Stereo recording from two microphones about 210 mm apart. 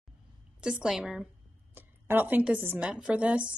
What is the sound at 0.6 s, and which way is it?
A woman's voice, 5° right (ahead or behind).